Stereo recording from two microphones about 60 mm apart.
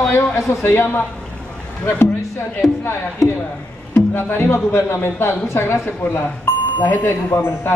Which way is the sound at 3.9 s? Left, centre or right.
Left.